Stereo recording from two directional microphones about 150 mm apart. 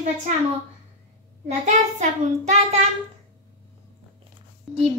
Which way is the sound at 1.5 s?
50° right (ahead or behind).